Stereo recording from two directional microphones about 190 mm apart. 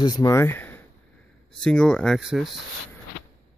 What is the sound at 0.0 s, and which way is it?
Speech, 20° left (ahead or behind).